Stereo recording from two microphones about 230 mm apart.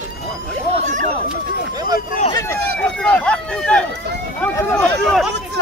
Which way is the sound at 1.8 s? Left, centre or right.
Left.